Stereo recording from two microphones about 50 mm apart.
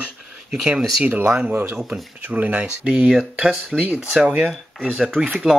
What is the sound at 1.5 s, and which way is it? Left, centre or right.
Speech, right.